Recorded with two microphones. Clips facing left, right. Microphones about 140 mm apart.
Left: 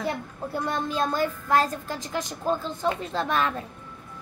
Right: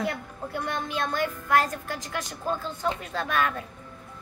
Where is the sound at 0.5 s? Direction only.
35° left (ahead or behind).